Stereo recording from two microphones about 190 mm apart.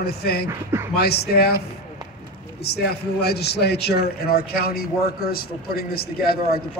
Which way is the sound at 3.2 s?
60° left (ahead or behind).